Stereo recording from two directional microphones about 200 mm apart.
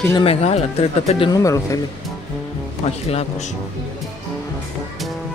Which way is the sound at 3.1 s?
30° left (ahead or behind).